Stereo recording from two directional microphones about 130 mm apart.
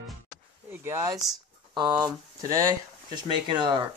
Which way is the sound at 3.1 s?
35° right (ahead or behind).